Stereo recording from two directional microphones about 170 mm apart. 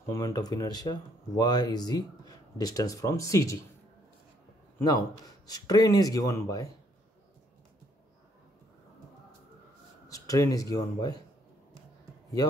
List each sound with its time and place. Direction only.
0.1 s speech: 20° left (ahead or behind)
4.7 s speech: 20° left (ahead or behind)
10.0 s speech: 20° left (ahead or behind)